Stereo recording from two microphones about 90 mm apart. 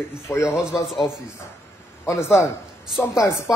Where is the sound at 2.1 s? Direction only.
30° left (ahead or behind).